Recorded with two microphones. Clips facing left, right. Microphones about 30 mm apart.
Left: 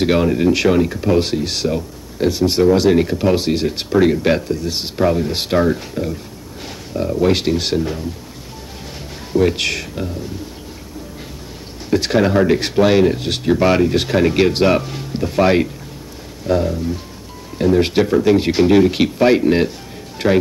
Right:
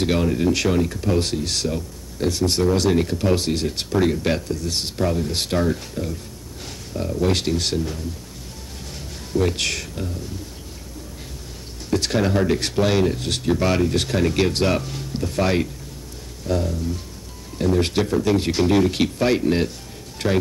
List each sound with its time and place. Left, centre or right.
0.0 s speech: centre
9.3 s speech: centre
11.9 s speech: centre